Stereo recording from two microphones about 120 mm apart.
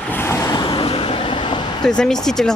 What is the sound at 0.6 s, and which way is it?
Vehicle, 45° left (ahead or behind).